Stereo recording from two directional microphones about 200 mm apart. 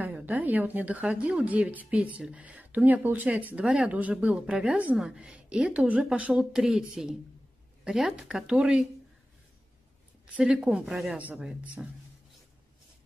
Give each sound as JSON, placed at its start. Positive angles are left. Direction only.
{"t": 0.0, "sound": "a woman's voice", "side_deg": -10}
{"t": 10.3, "sound": "a woman's voice", "side_deg": -5}